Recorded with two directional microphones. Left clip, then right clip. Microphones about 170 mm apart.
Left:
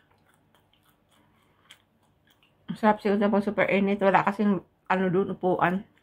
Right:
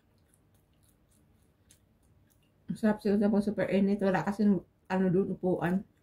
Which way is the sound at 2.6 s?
30° right (ahead or behind).